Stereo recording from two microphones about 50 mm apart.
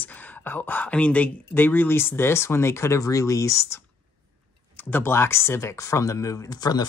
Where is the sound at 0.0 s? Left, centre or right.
Left.